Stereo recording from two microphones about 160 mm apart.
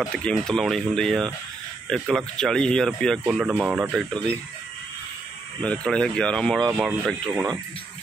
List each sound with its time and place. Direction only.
0.0 s speech: centre (ahead or behind)
5.6 s speech: 5° left (ahead or behind)
6.7 s speech: 5° right (ahead or behind)
7.3 s speech: 20° right (ahead or behind)